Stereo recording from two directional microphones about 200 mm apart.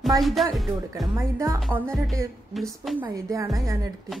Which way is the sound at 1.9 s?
Centre (ahead or behind).